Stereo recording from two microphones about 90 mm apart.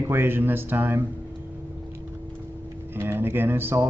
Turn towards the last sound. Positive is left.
turn(degrees=-25)  # may be behind; listen again after turning